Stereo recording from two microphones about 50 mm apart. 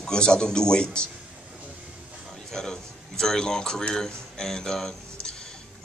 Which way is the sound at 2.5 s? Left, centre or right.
Centre.